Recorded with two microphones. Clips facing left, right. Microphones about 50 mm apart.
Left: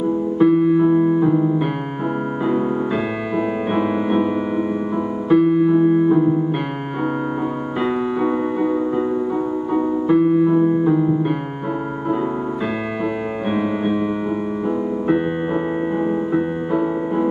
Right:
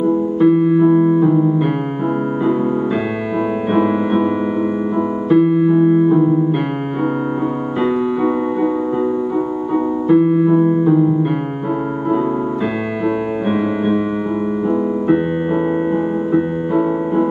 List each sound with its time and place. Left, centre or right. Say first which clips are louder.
0.4 s piano: right 2 dB; centre
3.7 s piano: right 4 dB; centre
5.3 s music: right 1 dB; centre
7.8 s keyboard: right 3 dB; centre
10.0 s piano: right 3 dB; centre
15.0 s music: right 2 dB; centre